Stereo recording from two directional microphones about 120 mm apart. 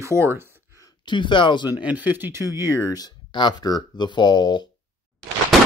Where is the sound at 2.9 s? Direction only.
35° left (ahead or behind).